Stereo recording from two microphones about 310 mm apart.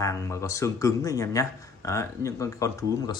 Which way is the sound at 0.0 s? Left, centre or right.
Centre.